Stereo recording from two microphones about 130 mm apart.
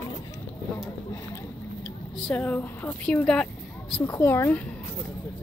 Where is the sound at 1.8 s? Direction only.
10° left (ahead or behind).